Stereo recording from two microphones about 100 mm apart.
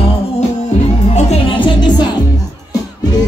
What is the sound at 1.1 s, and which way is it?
Music, 55° left (ahead or behind).